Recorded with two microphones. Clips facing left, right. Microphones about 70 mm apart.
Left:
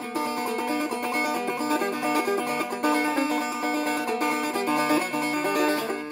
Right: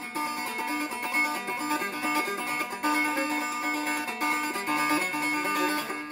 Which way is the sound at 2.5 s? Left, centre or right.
Centre.